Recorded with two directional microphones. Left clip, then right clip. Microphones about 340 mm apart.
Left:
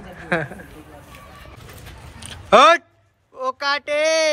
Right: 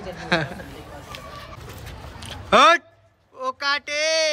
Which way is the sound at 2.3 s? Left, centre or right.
Centre.